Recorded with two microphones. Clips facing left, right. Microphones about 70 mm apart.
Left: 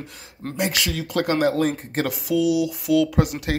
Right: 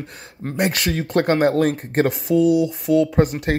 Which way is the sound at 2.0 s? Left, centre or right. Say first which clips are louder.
Right 3 dB; right.